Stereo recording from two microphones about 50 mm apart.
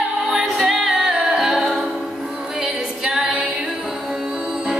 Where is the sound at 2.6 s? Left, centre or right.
Centre.